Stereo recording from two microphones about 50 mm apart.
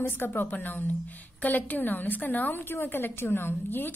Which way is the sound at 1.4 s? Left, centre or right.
Left.